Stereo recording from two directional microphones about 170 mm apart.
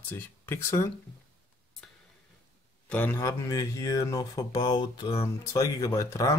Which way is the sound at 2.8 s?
10° left (ahead or behind).